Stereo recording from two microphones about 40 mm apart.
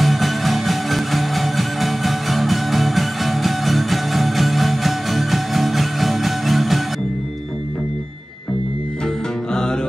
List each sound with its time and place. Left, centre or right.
0.0 s music: centre
9.5 s music: centre